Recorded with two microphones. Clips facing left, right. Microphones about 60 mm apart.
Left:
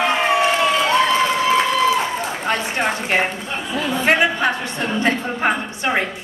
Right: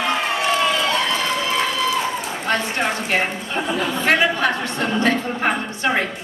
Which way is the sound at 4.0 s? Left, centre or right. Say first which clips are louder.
Left 1 dB; left.